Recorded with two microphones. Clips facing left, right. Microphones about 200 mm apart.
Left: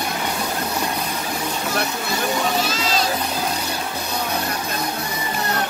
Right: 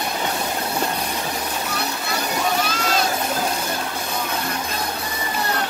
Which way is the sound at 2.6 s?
55° right (ahead or behind).